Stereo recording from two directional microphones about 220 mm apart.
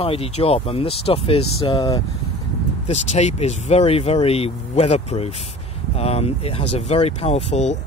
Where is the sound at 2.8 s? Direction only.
30° left (ahead or behind).